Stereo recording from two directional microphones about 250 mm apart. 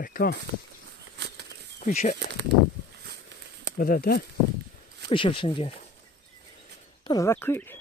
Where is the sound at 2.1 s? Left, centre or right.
Right.